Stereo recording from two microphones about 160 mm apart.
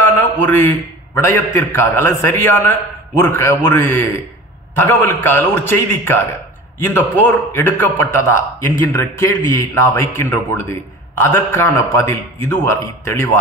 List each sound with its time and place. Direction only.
0.2 s a man's voice: 10° left (ahead or behind)